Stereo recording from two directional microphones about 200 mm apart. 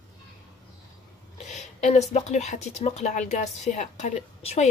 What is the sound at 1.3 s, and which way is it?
A woman's voice, 35° left (ahead or behind).